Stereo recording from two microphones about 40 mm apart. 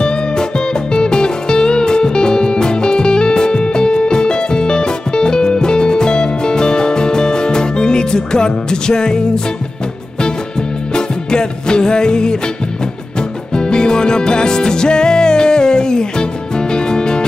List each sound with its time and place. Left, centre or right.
0.9 s music: left
11.0 s music: centre
13.6 s music: left